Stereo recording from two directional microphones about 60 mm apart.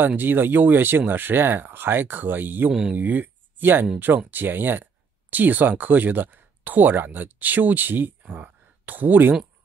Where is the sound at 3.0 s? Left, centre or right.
Right.